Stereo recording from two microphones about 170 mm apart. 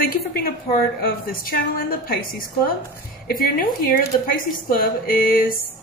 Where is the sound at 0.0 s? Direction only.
65° left (ahead or behind).